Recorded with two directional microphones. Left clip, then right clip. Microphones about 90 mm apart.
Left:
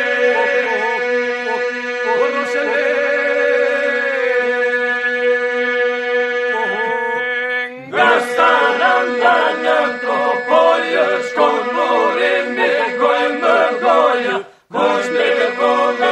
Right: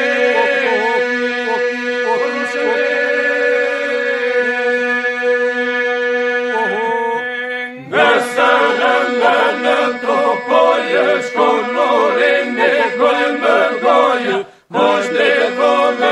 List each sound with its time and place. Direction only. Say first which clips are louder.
8.0 s chant: even; 35° right (ahead or behind)